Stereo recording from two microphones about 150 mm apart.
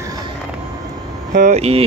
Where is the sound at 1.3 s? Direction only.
50° right (ahead or behind).